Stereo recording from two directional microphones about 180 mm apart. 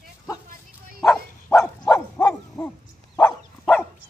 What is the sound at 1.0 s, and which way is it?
Bow-wow, centre (ahead or behind).